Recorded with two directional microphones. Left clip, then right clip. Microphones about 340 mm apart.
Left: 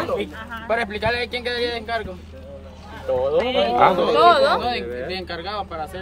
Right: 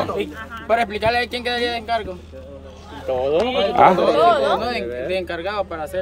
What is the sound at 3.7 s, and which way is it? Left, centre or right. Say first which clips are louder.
Speech: right 4 dB; centre.